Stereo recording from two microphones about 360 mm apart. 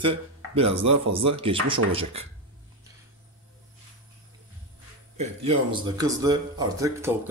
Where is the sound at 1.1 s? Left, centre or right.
Centre.